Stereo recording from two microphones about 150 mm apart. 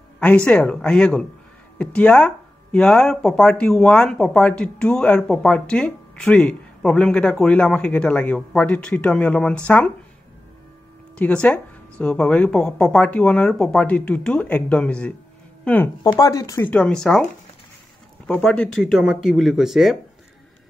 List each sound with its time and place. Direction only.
0.5 s speech: 5° left (ahead or behind)
11.1 s speech: 10° left (ahead or behind)
16.0 s speech: 25° left (ahead or behind)
16.6 s speech: 5° left (ahead or behind)